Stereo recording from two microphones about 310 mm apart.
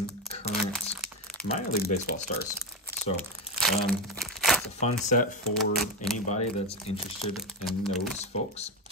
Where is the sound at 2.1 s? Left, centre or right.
Left.